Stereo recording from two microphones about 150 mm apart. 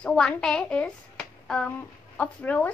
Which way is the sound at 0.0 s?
5° left (ahead or behind).